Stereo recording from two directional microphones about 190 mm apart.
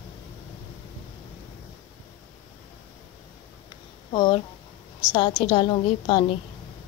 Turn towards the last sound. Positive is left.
turn(degrees=25)  # may be behind; listen again after turning